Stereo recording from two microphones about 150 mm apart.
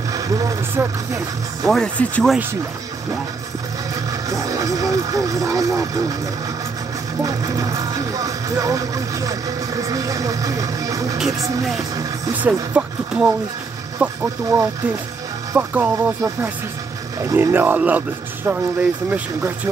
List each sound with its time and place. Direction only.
0.1 s speech: 25° right (ahead or behind)
1.7 s speech: 5° left (ahead or behind)
4.3 s speech: 20° right (ahead or behind)
7.2 s speech: 25° right (ahead or behind)
12.4 s speech: 10° right (ahead or behind)